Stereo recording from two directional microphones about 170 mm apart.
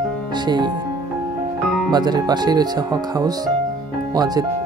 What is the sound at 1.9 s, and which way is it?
Speech, 25° right (ahead or behind).